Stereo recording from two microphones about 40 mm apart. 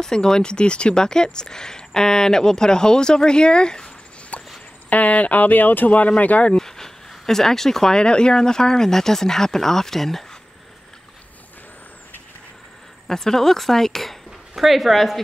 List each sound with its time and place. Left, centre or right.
0.0 s speech: centre
4.3 s walk: left
4.8 s speech: left
5.9 s speech: left
6.5 s speech: centre
13.1 s speech: centre
14.5 s speech: centre